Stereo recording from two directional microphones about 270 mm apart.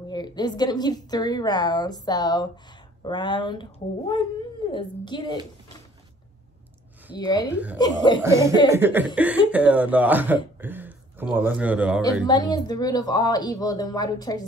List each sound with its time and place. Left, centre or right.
0.1 s a woman's voice: centre
4.6 s a woman's voice: centre
7.2 s a woman's voice: centre
8.2 s speech: centre
12.3 s a woman's voice: centre